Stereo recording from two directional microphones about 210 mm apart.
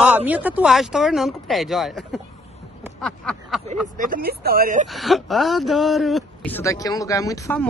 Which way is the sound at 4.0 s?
45° right (ahead or behind).